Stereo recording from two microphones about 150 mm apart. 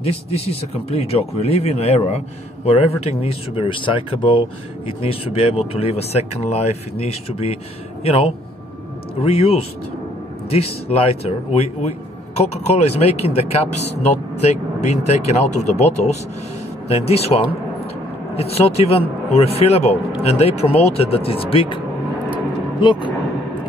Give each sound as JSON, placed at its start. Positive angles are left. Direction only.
{"t": 0.0, "sound": "speech", "side_deg": 40}